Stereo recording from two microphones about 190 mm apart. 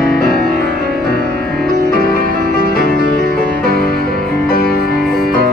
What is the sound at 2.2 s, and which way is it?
Music, 50° right (ahead or behind).